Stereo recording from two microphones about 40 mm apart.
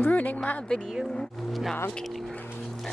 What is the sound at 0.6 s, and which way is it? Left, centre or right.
Speech, centre.